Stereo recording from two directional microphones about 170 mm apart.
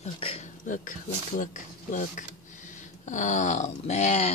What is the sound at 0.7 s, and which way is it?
Speech, 50° left (ahead or behind).